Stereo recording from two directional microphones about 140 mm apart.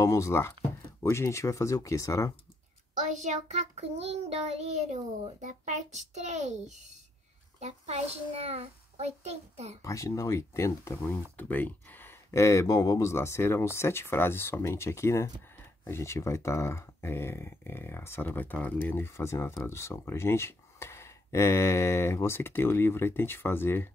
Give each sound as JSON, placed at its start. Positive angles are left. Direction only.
{"t": 0.0, "sound": "speech", "side_deg": 20}
{"t": 3.3, "sound": "child singing", "side_deg": -55}
{"t": 7.6, "sound": "child singing", "side_deg": -50}
{"t": 9.8, "sound": "speech", "side_deg": 20}